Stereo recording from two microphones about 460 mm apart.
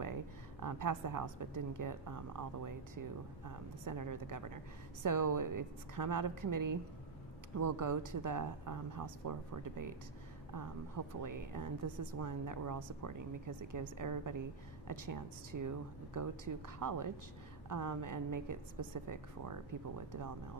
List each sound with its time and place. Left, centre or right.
0.6 s a woman's voice: right
10.5 s speech: right